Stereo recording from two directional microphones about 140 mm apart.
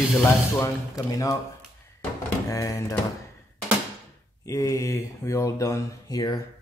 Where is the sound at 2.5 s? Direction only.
25° left (ahead or behind).